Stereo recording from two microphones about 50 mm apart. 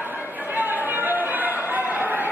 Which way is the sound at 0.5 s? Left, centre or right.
Right.